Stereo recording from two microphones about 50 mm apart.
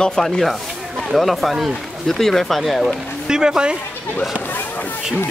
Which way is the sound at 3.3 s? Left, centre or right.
Centre.